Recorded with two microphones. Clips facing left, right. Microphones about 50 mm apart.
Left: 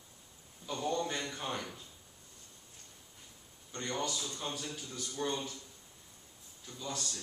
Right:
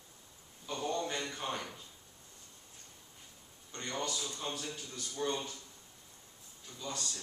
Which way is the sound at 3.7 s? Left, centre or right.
Centre.